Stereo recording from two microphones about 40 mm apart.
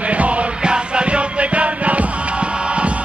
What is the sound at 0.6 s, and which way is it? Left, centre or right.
Music, right.